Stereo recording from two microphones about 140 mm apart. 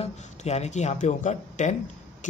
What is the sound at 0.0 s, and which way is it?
Speech, 50° left (ahead or behind).